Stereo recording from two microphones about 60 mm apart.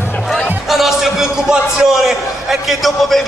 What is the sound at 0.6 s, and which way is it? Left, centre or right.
Music, centre.